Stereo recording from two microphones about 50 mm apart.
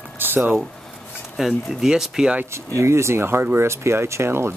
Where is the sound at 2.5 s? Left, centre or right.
Right.